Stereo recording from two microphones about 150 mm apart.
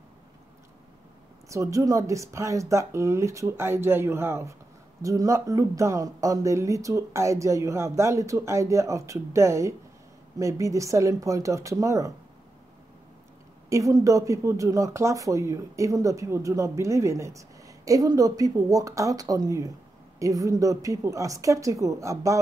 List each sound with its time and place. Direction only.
1.5 s speech: 20° right (ahead or behind)
13.7 s speech: 20° right (ahead or behind)